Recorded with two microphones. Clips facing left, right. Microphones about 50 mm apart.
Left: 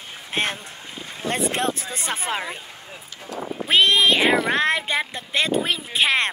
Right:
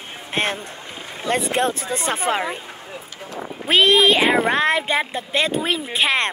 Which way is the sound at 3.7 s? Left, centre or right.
Centre.